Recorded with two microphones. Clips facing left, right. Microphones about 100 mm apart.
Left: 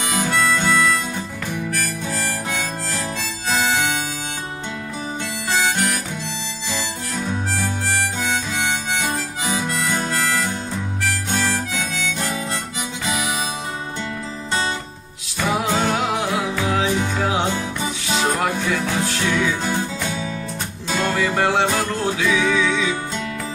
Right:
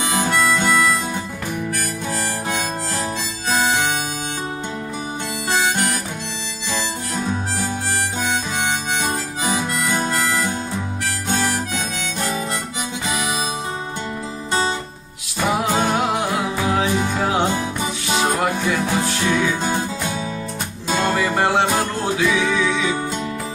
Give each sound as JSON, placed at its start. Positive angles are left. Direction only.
{"t": 0.1, "sound": "harmonica", "side_deg": -15}
{"t": 9.8, "sound": "harmonica", "side_deg": -10}
{"t": 10.1, "sound": "music", "side_deg": -5}
{"t": 11.1, "sound": "harmonica", "side_deg": -10}
{"t": 15.4, "sound": "music", "side_deg": -10}
{"t": 18.9, "sound": "music", "side_deg": -20}
{"t": 20.9, "sound": "music", "side_deg": -20}
{"t": 21.2, "sound": "music", "side_deg": -10}